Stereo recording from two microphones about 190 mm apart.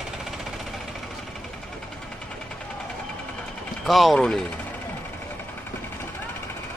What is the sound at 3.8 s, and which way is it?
Speech, centre (ahead or behind).